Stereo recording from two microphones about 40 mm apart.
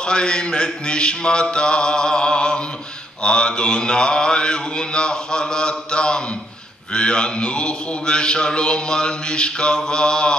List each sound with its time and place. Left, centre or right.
0.0 s a man's voice: left